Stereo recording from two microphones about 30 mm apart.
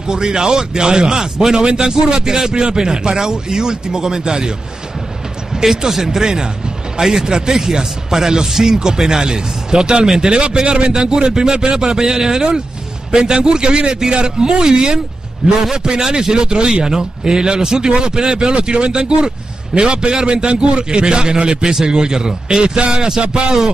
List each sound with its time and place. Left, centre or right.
0.1 s a man's voice: right
2.5 s a man's voice: right; by 6.2 s centre
6.2 s a man's voice: right
23.2 s a man's voice: right